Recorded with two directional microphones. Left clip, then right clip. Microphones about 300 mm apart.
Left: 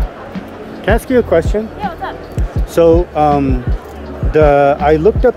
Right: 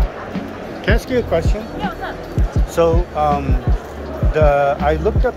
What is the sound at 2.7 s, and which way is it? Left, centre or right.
Speech, left.